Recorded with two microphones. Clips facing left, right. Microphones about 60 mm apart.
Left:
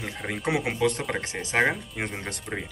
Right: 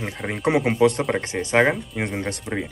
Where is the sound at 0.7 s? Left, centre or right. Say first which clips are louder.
Right 7 dB; right.